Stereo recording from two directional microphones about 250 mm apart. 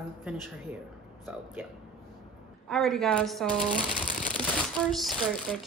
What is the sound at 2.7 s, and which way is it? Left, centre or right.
Speech, centre.